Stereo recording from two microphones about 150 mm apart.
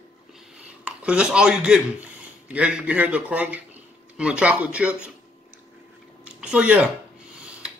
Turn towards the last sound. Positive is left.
turn(degrees=-5)  # may be behind; listen again after turning